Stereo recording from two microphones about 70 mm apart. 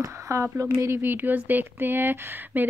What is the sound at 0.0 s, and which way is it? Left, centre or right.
Speech, right.